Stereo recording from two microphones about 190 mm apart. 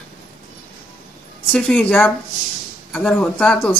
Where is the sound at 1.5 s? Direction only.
10° left (ahead or behind).